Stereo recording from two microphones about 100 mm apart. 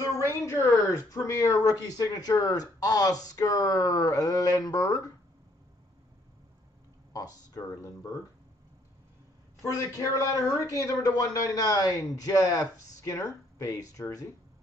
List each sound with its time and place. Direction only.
0.2 s speech: 30° left (ahead or behind)
7.1 s speech: 40° left (ahead or behind)
9.7 s speech: 30° left (ahead or behind)